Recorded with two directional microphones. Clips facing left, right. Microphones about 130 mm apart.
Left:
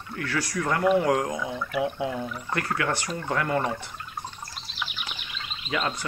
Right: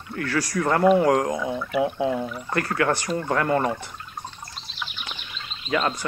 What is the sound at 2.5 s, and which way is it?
Speech, 50° right (ahead or behind).